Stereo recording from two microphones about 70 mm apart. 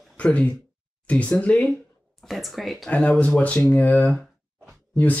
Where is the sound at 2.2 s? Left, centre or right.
Centre.